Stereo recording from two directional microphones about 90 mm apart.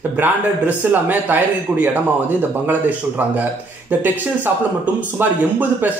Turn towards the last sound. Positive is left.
turn(degrees=-20)  # may be behind; listen again after turning